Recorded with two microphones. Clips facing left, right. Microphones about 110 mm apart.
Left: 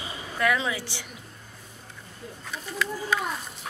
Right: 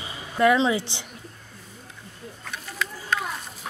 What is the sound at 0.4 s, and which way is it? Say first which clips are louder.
Speech: right 7 dB; 25° right (ahead or behind).